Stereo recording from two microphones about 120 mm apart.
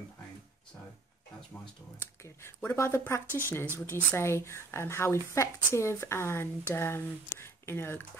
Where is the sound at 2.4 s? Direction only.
20° left (ahead or behind).